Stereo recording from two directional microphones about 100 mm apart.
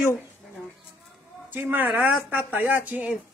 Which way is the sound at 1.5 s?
20° right (ahead or behind).